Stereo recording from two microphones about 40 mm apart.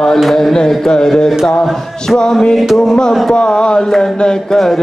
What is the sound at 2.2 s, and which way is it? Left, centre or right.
Mantra, centre.